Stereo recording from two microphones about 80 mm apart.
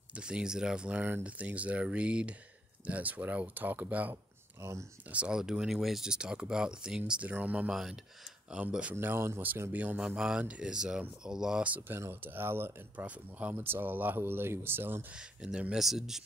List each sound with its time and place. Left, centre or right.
0.1 s speech: centre
4.6 s speech: right
5.1 s speech: centre
7.7 s speech: centre
8.5 s speech: centre
8.9 s speech: right; by 11.7 s centre
12.0 s speech: right
15.1 s speech: centre